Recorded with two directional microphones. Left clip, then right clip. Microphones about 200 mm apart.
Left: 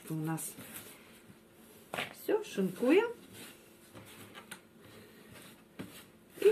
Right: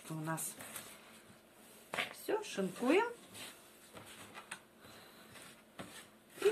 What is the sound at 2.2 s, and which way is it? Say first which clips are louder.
Speech: left 8 dB; 25° right (ahead or behind).